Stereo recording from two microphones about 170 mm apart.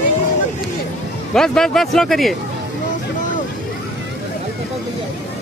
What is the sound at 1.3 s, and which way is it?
Speech, 5° left (ahead or behind).